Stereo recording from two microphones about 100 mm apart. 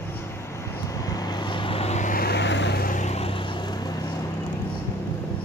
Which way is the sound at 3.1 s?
80° left.